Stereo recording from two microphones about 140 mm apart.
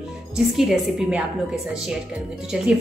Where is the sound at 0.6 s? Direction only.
5° right (ahead or behind).